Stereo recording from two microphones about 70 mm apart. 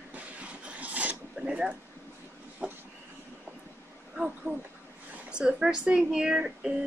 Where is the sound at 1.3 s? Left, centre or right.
Centre.